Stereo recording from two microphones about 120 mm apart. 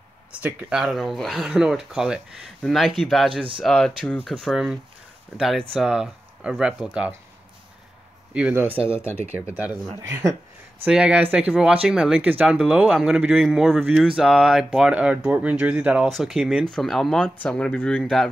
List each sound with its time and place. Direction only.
0.4 s speech: 15° right (ahead or behind)
8.3 s speech: 10° right (ahead or behind)
10.0 s speech: 25° right (ahead or behind)
10.9 s speech: 10° right (ahead or behind)
16.1 s speech: centre (ahead or behind)